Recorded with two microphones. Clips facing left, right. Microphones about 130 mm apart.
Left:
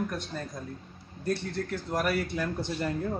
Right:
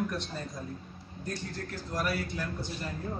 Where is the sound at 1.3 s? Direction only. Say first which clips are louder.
Left 8 dB; 60° left (ahead or behind).